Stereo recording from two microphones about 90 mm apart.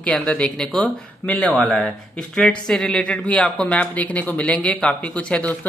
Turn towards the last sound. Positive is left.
turn(degrees=15)  # may be behind; listen again after turning